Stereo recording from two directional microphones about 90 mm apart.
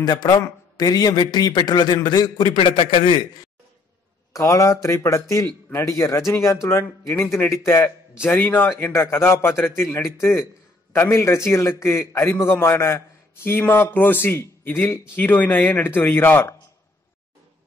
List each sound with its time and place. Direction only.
0.0 s a man's voice: 50° left (ahead or behind)
2.5 s a man's voice: 85° left; by 3.3 s 60° left (ahead or behind)
4.3 s a man's voice: 35° left (ahead or behind)